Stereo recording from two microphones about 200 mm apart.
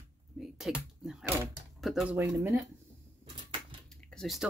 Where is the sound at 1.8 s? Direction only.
5° right (ahead or behind).